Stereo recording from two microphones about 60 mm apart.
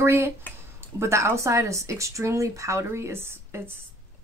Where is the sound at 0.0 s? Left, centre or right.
Right.